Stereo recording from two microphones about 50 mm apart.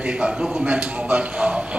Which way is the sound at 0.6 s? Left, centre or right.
Right.